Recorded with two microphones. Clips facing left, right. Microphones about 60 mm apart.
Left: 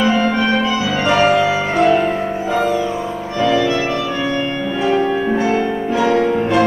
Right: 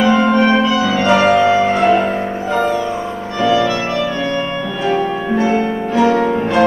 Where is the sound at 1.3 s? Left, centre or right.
Centre.